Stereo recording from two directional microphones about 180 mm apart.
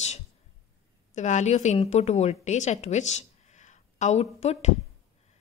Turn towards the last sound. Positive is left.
turn(degrees=35)  # may be behind; listen again after turning